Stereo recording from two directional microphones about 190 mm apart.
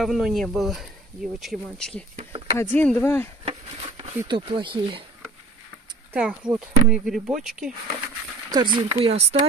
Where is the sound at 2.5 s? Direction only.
10° left (ahead or behind).